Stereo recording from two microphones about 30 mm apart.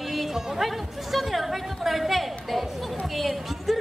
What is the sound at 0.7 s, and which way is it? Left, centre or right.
A woman's voice, centre.